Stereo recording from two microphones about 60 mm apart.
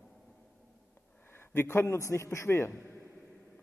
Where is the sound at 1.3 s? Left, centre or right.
Left.